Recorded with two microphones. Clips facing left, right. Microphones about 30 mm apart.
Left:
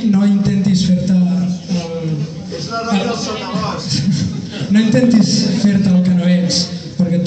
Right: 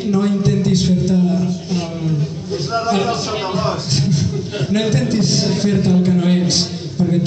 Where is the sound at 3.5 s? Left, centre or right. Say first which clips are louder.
Right 1 dB; left.